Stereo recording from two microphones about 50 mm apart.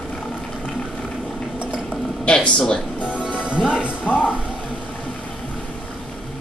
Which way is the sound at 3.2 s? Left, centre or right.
Centre.